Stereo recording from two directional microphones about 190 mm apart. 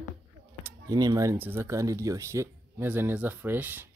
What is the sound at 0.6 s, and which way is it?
Speech, 20° right (ahead or behind).